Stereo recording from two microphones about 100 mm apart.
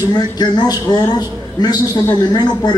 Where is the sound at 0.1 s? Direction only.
45° left (ahead or behind).